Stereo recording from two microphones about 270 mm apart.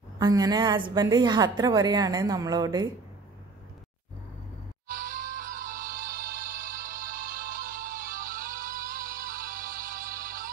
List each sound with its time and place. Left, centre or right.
0.2 s a woman's voice: centre
4.8 s music: right